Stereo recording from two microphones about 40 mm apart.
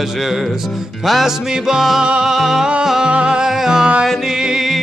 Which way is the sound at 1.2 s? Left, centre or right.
Centre.